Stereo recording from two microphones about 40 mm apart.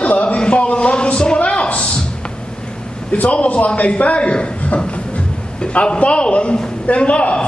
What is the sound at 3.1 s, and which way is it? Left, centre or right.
A man's voice, left.